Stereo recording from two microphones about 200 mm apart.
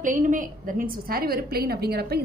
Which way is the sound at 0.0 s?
40° right (ahead or behind).